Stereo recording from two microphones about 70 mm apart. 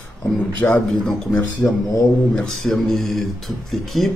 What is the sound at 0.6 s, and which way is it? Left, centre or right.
Speech, left.